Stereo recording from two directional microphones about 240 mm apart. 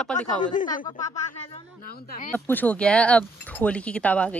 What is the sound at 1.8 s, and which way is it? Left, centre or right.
Speech, left.